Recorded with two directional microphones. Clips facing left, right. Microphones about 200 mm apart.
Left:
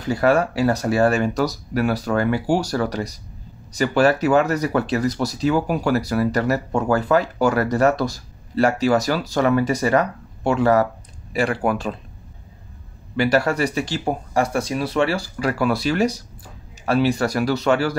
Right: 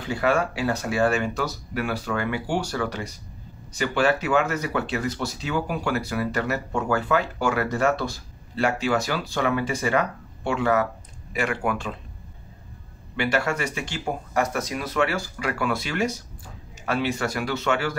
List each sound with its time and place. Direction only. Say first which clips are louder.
0.0 s speech: left 5 dB; 40° left (ahead or behind)
13.1 s speech: left 6 dB; 40° left (ahead or behind)